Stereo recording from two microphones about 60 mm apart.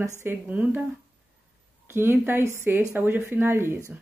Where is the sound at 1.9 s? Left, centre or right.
Right.